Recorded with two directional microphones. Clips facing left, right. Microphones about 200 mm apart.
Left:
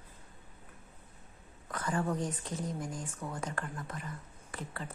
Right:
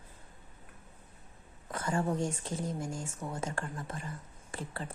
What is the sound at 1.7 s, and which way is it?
Speech, 25° right (ahead or behind).